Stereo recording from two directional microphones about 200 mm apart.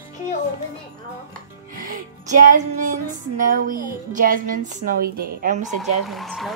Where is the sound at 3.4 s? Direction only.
45° right (ahead or behind).